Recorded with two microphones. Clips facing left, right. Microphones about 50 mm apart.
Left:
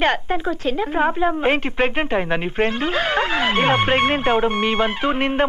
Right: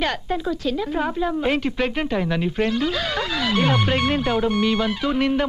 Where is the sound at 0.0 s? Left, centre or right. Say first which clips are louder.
Left 4 dB; left.